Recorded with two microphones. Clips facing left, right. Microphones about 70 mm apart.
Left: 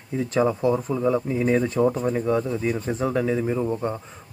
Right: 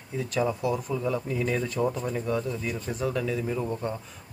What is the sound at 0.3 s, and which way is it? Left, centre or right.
Speech, left.